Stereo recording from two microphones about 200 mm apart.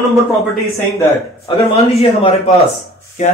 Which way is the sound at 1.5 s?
25° left (ahead or behind).